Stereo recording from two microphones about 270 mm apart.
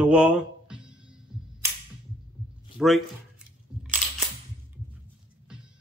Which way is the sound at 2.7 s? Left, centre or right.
Centre.